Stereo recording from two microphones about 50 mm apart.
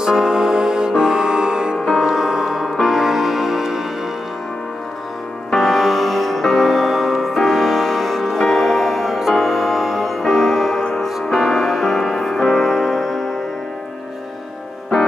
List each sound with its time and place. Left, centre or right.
0.0 s music: centre
5.6 s music: centre